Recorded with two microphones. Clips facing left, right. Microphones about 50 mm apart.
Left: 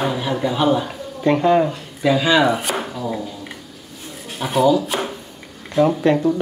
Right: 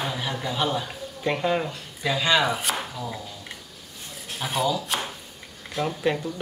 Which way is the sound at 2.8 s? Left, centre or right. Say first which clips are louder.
Left 8 dB; centre.